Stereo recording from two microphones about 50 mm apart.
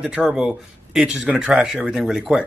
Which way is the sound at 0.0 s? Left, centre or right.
Centre.